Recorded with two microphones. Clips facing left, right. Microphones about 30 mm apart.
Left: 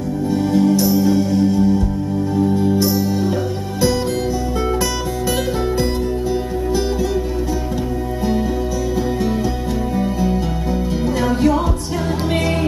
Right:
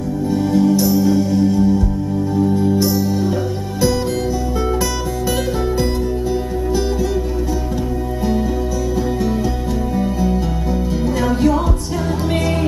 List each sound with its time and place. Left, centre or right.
0.3 s music: centre
9.9 s music: centre